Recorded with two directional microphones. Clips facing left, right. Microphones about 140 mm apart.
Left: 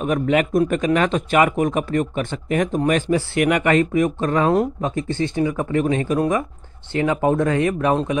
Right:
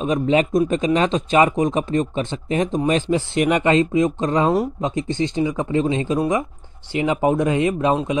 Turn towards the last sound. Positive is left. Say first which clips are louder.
# even
turn(degrees=-20)  # may be behind; listen again after turning